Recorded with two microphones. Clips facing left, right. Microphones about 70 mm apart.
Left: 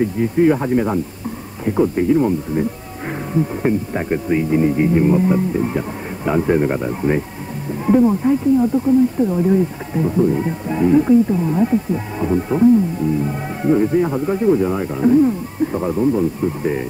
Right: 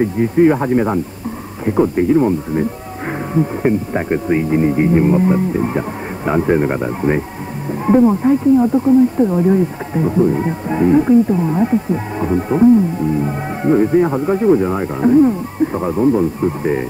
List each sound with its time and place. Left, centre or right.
0.0 s speech: right